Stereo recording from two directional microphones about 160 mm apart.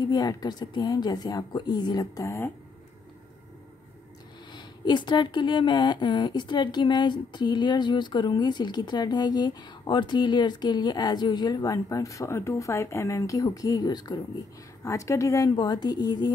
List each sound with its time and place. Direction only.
0.0 s speech: 25° left (ahead or behind)
4.6 s speech: 30° left (ahead or behind)